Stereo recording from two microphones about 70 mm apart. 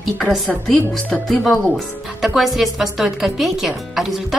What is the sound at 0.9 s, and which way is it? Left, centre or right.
Speech, centre.